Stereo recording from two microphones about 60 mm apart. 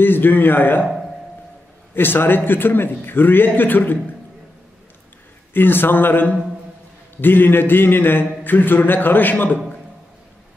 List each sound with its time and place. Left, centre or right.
0.0 s a man's voice: left
2.0 s a man's voice: left
5.5 s a man's voice: left